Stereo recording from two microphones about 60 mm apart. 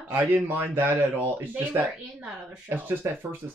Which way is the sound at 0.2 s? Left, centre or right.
Right.